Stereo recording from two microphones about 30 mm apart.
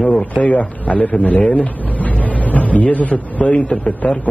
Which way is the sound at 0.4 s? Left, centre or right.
Left.